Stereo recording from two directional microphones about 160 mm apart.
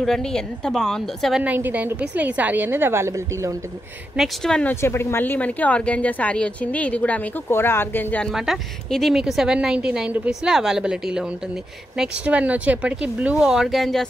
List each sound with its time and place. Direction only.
0.0 s a woman's voice: 5° left (ahead or behind); by 3.5 s 20° right (ahead or behind)
4.2 s a woman's voice: 5° left (ahead or behind)
4.8 s a woman's voice: 15° left (ahead or behind)
8.3 s a woman's voice: centre (ahead or behind)